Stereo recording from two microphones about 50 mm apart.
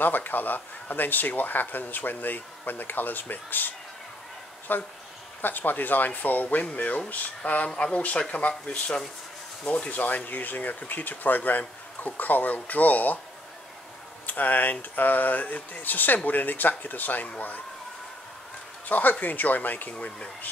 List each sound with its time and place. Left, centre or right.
0.0 s speech: left
14.2 s speech: left
18.9 s speech: left